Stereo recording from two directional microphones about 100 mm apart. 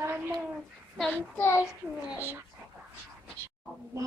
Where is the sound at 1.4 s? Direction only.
25° left (ahead or behind).